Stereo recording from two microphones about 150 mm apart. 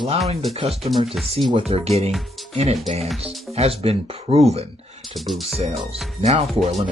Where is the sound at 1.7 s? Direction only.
45° right (ahead or behind).